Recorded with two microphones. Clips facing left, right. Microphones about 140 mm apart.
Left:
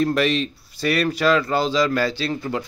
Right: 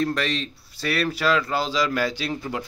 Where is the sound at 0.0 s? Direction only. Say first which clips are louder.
Left 5 dB; 5° left (ahead or behind).